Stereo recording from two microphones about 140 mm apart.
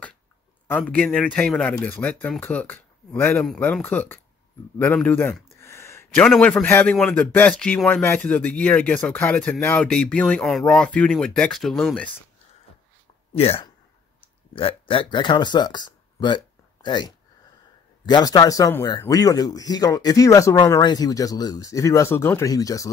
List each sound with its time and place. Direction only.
0.7 s a man's voice: 10° left (ahead or behind)
5.6 s a sound: 20° left (ahead or behind)
6.1 s a man's voice: 10° left (ahead or behind)
13.3 s speech: 45° left (ahead or behind); by 22.8 s 25° left (ahead or behind)